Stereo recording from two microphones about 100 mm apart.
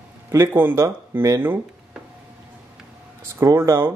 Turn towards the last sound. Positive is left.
turn(degrees=-25)  # may be behind; listen again after turning